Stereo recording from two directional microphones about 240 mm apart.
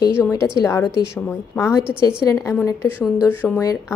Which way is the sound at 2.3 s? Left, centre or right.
Centre.